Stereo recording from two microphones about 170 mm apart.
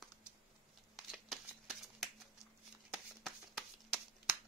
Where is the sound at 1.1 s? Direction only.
Centre (ahead or behind).